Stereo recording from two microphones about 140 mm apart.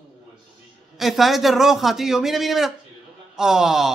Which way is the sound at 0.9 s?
Centre (ahead or behind).